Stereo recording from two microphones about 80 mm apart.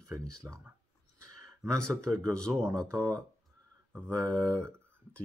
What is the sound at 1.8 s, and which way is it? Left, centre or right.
Speech, centre.